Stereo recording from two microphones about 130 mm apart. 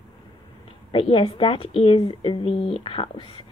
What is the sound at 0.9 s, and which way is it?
Speech, 45° left (ahead or behind).